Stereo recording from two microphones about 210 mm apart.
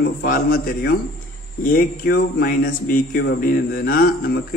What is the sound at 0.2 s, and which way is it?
Speech, 45° left (ahead or behind).